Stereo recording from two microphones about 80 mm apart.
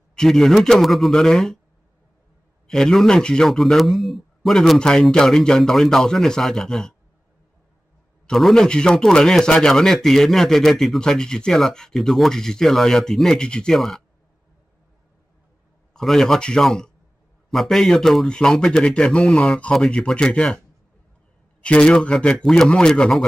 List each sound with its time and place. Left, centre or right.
0.1 s a man's voice: centre
2.7 s a man's voice: centre
8.3 s a man's voice: centre
15.9 s a man's voice: centre